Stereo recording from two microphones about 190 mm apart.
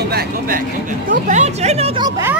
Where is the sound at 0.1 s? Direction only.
50° right (ahead or behind); by 2.0 s 30° right (ahead or behind).